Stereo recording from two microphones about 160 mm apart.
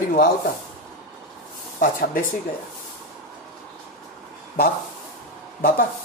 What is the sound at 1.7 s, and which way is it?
Speech, 60° left (ahead or behind).